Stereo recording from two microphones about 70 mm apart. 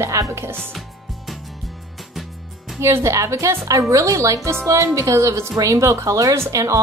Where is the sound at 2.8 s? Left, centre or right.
Right.